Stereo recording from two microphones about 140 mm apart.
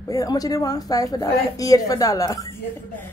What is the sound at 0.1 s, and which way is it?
A woman's voice, 25° left (ahead or behind).